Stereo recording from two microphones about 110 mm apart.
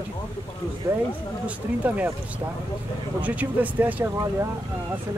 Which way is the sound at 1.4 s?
15° right (ahead or behind).